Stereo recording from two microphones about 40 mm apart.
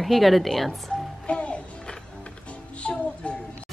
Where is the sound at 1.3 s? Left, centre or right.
Left.